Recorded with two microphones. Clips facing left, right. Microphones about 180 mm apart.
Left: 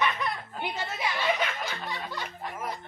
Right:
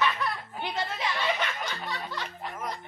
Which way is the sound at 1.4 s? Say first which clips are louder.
Left 1 dB; 10° left (ahead or behind).